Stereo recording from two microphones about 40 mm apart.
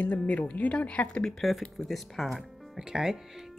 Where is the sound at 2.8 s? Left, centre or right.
Centre.